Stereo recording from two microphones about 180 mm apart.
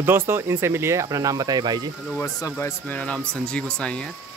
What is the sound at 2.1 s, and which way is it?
Speech, 15° left (ahead or behind).